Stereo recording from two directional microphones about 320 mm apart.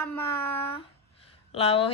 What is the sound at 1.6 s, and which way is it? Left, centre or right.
Speech, centre.